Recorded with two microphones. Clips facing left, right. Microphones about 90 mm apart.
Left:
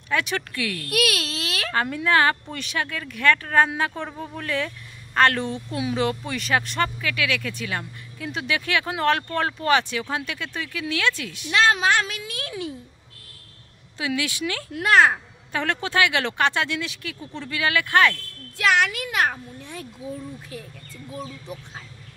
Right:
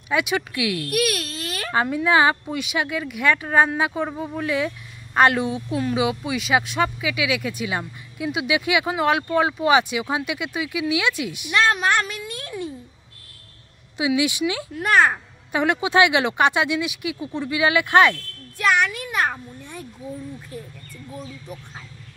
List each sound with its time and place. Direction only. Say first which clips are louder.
0.1 s speech: right 3 dB; 10° right (ahead or behind)
0.8 s baby cry: right 1 dB; 90° left
1.7 s speech: right 3 dB; 15° right (ahead or behind)
12.3 s a sound: right 1 dB; 90° left
13.9 s speech: right 6 dB; 15° right (ahead or behind)
14.7 s speech: left 1 dB; 90° left
15.5 s speech: right 5 dB; 15° right (ahead or behind)
18.6 s a sound: right 1 dB; 90° left